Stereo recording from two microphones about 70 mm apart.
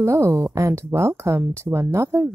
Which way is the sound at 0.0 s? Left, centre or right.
Right.